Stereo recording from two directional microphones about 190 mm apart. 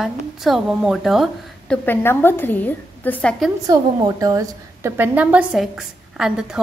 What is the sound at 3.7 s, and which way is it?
A woman's voice, 20° right (ahead or behind).